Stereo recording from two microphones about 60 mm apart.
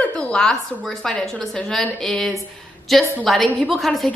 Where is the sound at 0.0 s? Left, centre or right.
Centre.